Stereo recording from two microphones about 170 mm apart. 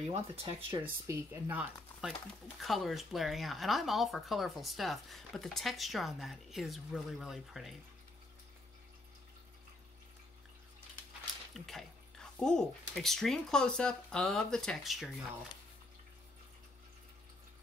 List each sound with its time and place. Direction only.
0.1 s speech: 30° right (ahead or behind)
0.8 s speech: 15° right (ahead or behind)
11.5 s speech: centre (ahead or behind)